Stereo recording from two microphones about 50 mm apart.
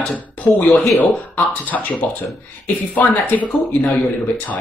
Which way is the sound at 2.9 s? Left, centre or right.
Left.